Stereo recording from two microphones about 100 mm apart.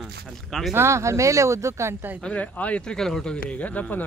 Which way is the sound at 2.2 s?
15° left (ahead or behind).